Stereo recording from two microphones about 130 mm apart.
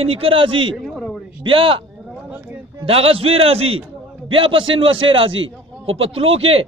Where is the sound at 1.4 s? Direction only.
45° right (ahead or behind).